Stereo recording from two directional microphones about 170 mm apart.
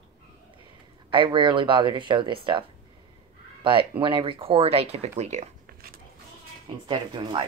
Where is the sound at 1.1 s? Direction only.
30° right (ahead or behind).